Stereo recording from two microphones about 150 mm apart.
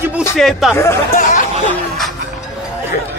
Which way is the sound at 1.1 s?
60° left (ahead or behind).